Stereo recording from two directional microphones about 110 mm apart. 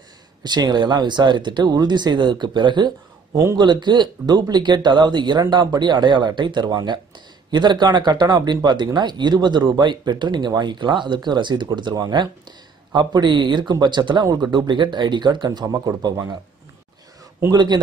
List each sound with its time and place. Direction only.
0.4 s a man's voice: 40° right (ahead or behind)
17.5 s a man's voice: 40° right (ahead or behind)